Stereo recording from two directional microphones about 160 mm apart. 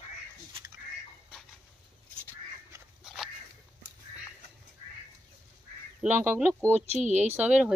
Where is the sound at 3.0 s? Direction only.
5° right (ahead or behind).